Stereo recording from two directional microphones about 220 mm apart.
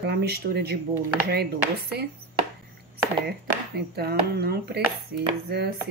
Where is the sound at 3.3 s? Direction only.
45° right (ahead or behind).